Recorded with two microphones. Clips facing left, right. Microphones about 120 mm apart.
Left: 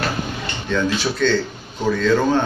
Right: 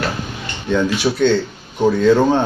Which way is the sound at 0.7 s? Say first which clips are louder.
Right 4 dB; 20° right (ahead or behind).